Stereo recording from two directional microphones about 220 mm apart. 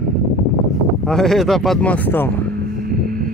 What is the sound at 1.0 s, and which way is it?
Speech, centre (ahead or behind).